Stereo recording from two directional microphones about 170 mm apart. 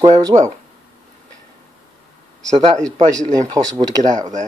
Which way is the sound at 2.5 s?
35° right (ahead or behind).